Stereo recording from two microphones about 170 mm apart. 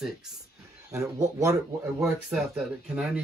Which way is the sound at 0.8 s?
20° right (ahead or behind).